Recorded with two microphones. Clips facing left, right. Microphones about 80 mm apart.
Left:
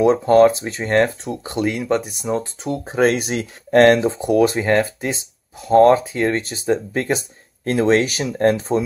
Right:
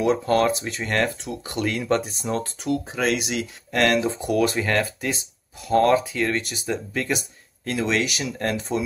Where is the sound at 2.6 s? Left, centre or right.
Left.